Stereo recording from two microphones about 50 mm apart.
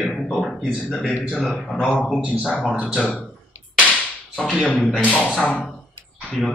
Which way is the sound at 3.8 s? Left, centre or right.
Left.